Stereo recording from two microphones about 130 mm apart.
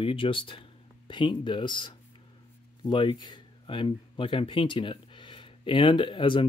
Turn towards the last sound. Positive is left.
turn(degrees=40)  # may be behind; listen again after turning